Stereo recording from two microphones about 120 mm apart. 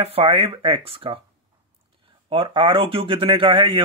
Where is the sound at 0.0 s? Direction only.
50° right (ahead or behind).